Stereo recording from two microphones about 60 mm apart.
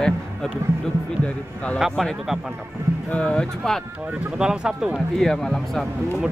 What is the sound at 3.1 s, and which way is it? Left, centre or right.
Speech, centre.